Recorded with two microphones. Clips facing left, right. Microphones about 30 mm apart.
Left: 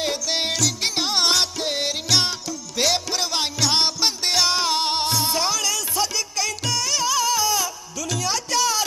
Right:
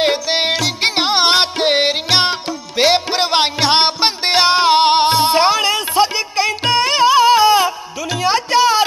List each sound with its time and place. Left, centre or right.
0.0 s music: right